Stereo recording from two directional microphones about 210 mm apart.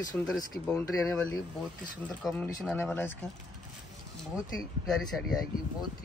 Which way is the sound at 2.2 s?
5° left (ahead or behind).